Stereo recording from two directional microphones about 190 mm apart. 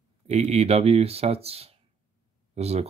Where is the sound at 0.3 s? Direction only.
35° right (ahead or behind).